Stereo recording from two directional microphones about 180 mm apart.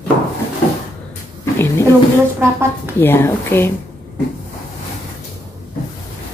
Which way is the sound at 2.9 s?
15° left (ahead or behind).